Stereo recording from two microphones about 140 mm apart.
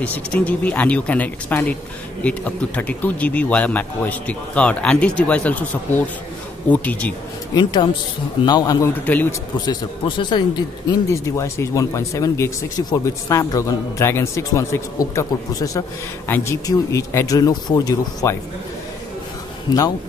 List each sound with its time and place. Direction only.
0.0 s speech: 10° left (ahead or behind)
7.5 s speech: 30° left (ahead or behind)
9.0 s speech: 10° left (ahead or behind)
9.7 s speech: 35° left (ahead or behind)
11.1 s speech: 20° left (ahead or behind)
16.3 s speech: 15° left (ahead or behind)